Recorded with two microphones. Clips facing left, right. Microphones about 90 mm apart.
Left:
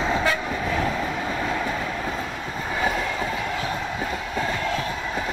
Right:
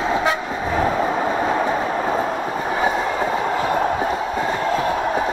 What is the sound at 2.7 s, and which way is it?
Train, 30° right (ahead or behind).